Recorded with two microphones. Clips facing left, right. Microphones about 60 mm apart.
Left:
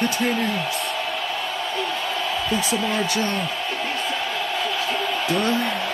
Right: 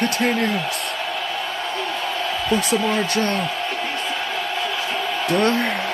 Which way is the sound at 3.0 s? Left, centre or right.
Right.